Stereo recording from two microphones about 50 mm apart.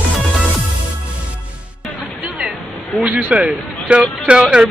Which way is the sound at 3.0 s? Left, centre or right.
Right.